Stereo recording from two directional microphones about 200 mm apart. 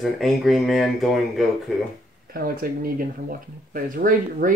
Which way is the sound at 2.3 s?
45° right (ahead or behind).